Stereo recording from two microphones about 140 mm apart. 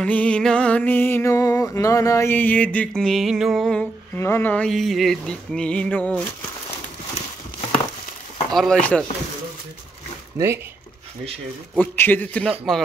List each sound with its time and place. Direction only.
0.0 s music: 10° left (ahead or behind)
4.2 s music: 15° left (ahead or behind)
8.5 s speech: 5° left (ahead or behind)
10.3 s speech: 20° right (ahead or behind)
11.7 s music: 10° left (ahead or behind)